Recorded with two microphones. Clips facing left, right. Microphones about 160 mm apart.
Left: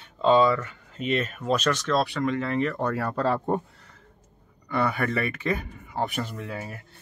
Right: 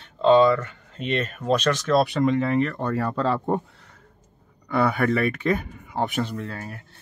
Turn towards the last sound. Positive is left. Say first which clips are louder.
# right 2 dB
turn(degrees=10)  # may be behind; listen again after turning